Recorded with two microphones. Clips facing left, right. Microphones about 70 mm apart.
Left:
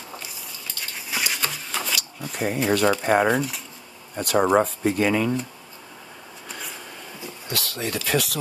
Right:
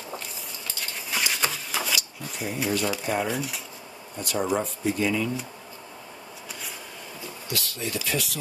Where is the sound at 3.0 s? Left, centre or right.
Left.